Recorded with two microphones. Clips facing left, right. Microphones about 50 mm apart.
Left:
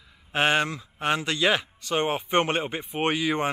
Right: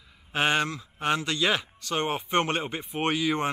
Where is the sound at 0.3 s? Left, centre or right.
Centre.